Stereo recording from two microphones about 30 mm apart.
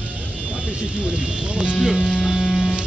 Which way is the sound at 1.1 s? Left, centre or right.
Right.